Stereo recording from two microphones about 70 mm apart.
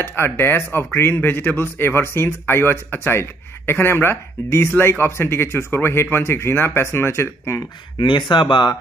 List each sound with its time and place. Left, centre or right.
0.0 s speech: left
8.0 s speech: left